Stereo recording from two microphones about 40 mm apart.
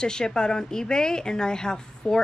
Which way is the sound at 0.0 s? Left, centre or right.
Centre.